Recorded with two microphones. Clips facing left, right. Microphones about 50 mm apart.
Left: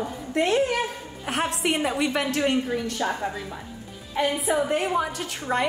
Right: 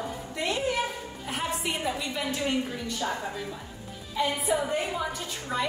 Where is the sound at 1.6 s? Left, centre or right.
Left.